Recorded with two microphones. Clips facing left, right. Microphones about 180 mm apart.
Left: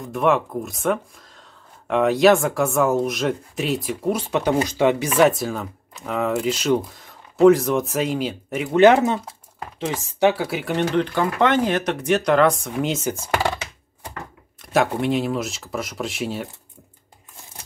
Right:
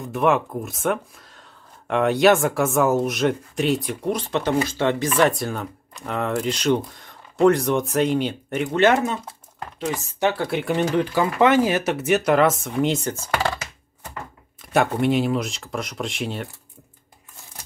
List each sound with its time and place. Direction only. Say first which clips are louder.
0.0 s speech: even; centre (ahead or behind)
8.7 s speech: left 5 dB; 20° left (ahead or behind); by 13.1 s centre (ahead or behind)
13.1 s speech: left 1 dB; 15° left (ahead or behind)
14.6 s speech: even; centre (ahead or behind)